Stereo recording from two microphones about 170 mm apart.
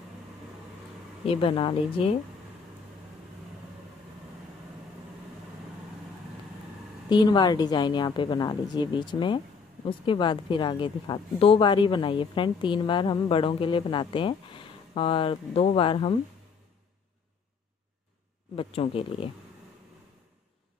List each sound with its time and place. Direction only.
1.2 s speech: 35° left (ahead or behind)
7.1 s a woman's voice: 25° left (ahead or behind)
18.6 s speech: 35° left (ahead or behind)